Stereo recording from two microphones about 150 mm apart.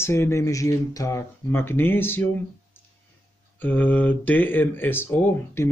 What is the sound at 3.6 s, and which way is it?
Speech, 10° left (ahead or behind).